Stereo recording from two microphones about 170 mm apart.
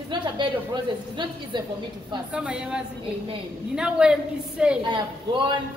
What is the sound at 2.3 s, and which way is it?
A woman's voice, 5° right (ahead or behind).